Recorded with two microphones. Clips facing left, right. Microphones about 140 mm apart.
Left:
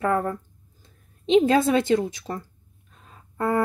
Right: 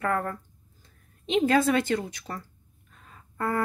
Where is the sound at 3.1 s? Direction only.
15° left (ahead or behind).